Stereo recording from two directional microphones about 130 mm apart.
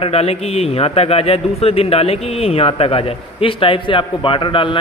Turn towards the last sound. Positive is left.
turn(degrees=40)  # may be behind; listen again after turning